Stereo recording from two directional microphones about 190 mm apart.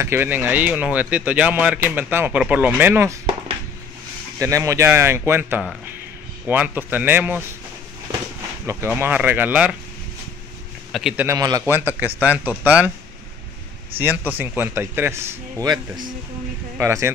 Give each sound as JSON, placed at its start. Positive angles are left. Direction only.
{"t": 0.0, "sound": "speech", "side_deg": -15}
{"t": 4.4, "sound": "speech", "side_deg": -15}
{"t": 8.6, "sound": "speech", "side_deg": -10}
{"t": 10.9, "sound": "a man's voice", "side_deg": 0}
{"t": 11.2, "sound": "speech", "side_deg": -20}
{"t": 14.3, "sound": "speech", "side_deg": -10}